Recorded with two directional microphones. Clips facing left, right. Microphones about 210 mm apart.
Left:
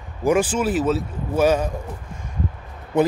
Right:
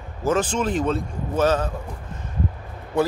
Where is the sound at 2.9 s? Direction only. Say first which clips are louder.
Left 3 dB; 20° left (ahead or behind).